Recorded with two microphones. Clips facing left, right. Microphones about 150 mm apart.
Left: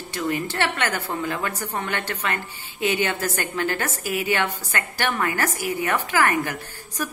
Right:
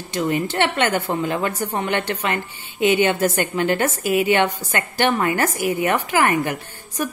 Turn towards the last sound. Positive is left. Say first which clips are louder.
# right 4 dB
turn(degrees=-20)  # may be behind; listen again after turning